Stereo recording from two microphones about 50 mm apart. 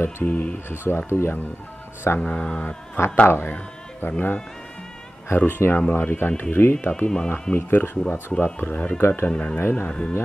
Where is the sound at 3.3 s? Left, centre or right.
Left.